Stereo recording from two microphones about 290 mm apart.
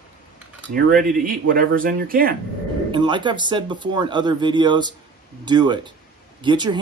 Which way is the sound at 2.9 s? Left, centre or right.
Centre.